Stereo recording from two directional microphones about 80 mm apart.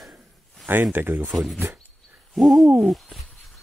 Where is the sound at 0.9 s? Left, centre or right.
Right.